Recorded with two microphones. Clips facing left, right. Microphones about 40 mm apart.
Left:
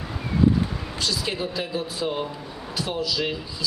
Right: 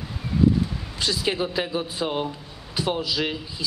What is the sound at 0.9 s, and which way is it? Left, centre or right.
A man's voice, right.